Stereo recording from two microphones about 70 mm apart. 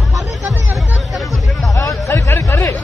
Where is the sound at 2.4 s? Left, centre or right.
Left.